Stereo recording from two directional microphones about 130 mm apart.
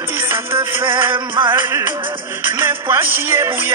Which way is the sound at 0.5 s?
40° right (ahead or behind).